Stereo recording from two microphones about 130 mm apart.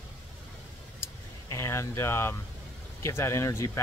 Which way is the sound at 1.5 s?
20° left (ahead or behind).